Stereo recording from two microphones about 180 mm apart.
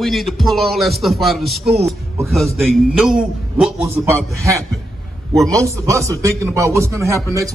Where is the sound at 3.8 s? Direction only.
15° right (ahead or behind).